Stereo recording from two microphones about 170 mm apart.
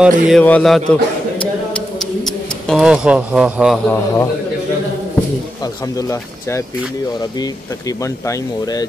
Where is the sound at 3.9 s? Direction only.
20° left (ahead or behind).